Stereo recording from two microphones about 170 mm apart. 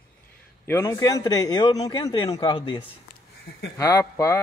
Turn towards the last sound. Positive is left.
turn(degrees=20)  # may be behind; listen again after turning